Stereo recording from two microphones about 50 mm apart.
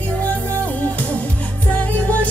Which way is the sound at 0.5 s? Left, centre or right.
Left.